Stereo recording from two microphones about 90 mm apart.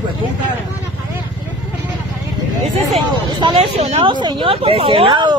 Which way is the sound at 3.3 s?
75° right (ahead or behind).